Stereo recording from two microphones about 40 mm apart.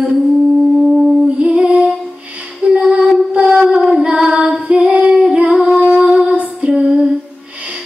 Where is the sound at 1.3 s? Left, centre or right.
Right.